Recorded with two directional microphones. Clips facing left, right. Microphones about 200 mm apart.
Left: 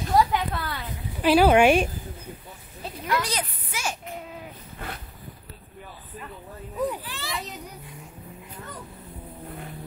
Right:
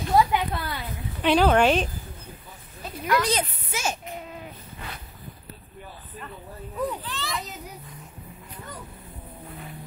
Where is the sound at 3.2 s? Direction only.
25° right (ahead or behind).